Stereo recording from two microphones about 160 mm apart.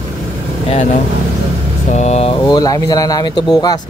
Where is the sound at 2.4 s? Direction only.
25° left (ahead or behind).